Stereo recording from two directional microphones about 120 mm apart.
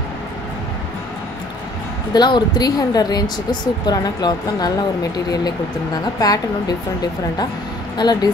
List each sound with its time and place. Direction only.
2.1 s speech: 40° left (ahead or behind)
6.1 s a woman's voice: 30° left (ahead or behind)
8.0 s speech: 35° left (ahead or behind)